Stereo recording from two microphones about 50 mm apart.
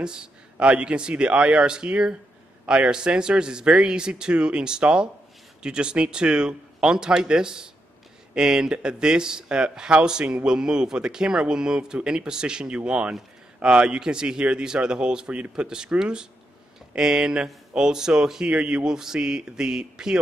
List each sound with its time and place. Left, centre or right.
0.0 s a man's voice: centre